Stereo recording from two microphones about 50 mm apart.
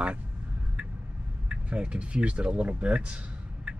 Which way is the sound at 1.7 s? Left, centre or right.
Right.